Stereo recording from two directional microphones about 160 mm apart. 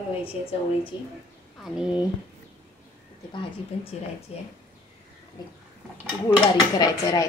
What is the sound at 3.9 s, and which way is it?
Speech, 40° left (ahead or behind).